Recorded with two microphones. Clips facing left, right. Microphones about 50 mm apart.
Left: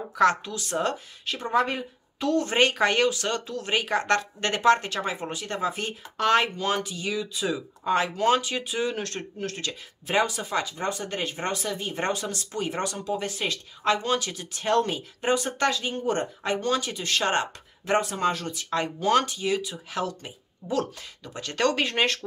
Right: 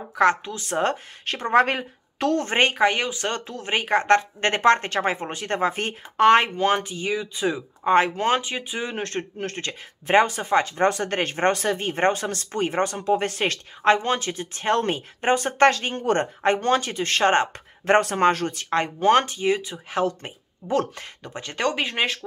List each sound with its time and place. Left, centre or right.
0.1 s a woman's voice: right
1.2 s speech: right
2.4 s a woman's voice: right
2.7 s a woman's voice: centre
3.3 s a woman's voice: right
13.9 s a woman's voice: right; by 22.2 s centre